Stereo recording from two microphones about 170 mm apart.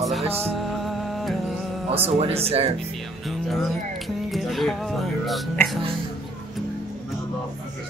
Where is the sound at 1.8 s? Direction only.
35° right (ahead or behind).